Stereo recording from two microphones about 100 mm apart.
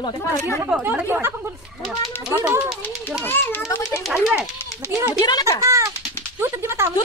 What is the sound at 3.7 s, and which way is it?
Speech, 35° left (ahead or behind).